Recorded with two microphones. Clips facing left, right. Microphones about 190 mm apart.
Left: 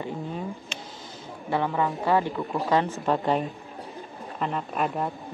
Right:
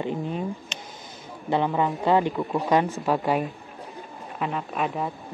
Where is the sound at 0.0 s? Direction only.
20° right (ahead or behind).